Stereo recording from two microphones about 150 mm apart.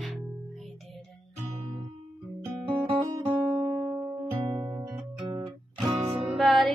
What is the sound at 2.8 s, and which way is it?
Guitar, 15° right (ahead or behind).